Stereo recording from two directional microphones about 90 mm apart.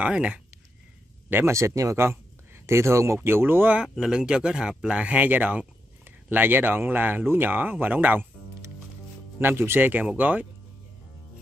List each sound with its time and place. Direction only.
0.0 s speech: 15° right (ahead or behind)
1.3 s speech: 35° right (ahead or behind)
3.9 s speech: 5° right (ahead or behind)
9.4 s speech: 25° right (ahead or behind)